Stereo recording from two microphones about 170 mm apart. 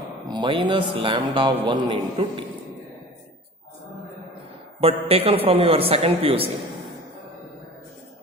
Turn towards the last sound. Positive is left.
turn(degrees=-35)  # may be behind; listen again after turning